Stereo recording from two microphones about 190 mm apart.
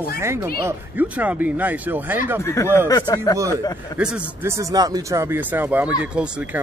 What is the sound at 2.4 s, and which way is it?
Speech, 15° left (ahead or behind).